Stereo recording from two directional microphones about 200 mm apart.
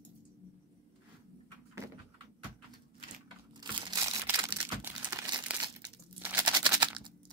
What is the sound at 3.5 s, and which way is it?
Crumpling, 20° right (ahead or behind).